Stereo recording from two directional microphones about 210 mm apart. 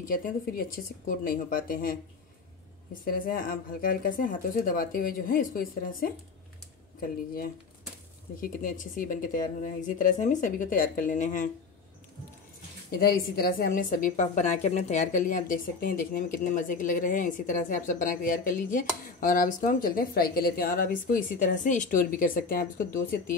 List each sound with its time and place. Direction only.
0.1 s a woman's voice: 45° left (ahead or behind)
12.9 s a woman's voice: 45° left (ahead or behind)